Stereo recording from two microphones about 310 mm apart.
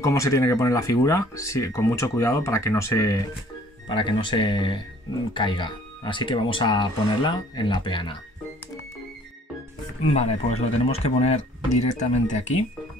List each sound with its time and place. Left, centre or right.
0.0 s speech: centre
10.1 s speech: left